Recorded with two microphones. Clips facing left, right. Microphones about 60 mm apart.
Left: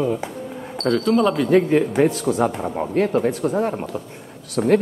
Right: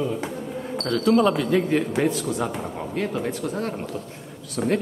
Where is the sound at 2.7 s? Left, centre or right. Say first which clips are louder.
Left 7 dB; left.